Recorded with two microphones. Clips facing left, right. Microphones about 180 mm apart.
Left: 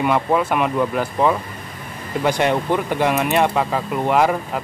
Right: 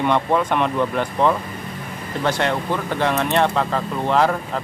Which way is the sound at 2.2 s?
15° left (ahead or behind).